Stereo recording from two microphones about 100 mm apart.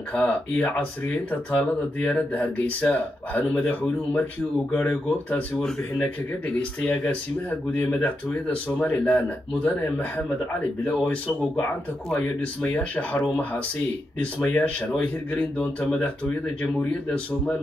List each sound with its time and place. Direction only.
0.1 s speech: 15° left (ahead or behind)
6.8 s speech: 15° left (ahead or behind)
14.4 s speech: 15° left (ahead or behind)